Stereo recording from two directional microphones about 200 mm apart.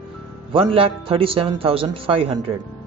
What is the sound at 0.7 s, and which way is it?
Speech, 25° right (ahead or behind).